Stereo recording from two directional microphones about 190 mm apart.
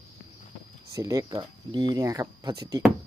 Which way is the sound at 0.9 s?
20° right (ahead or behind).